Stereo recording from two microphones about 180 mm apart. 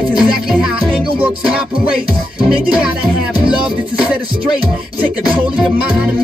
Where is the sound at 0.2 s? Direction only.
5° right (ahead or behind).